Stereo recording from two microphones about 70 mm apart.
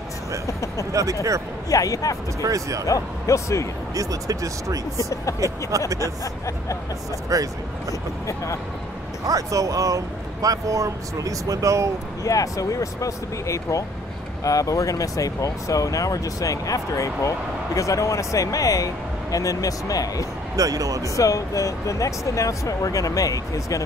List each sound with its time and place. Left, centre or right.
0.5 s speech: left
2.4 s speech: right
2.9 s speech: left
3.9 s speech: right
4.9 s speech: left
5.9 s speech: right
6.2 s speech: left
7.3 s speech: right
9.2 s speech: right
12.2 s speech: left
20.5 s speech: right
21.2 s speech: left